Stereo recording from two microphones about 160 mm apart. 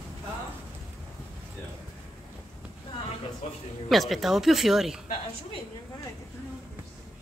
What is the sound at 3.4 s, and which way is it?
Speech, 45° left (ahead or behind).